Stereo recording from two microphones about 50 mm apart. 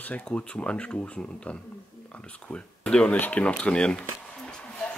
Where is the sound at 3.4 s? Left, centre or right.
Left.